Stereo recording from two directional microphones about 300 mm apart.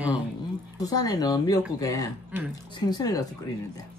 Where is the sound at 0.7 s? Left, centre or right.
Centre.